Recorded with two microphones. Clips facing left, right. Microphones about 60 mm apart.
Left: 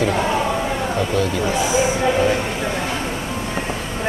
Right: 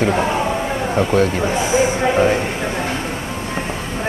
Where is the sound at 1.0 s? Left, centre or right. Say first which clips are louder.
Right 6 dB; right.